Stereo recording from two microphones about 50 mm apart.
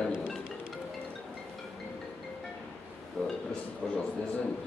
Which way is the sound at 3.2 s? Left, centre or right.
Centre.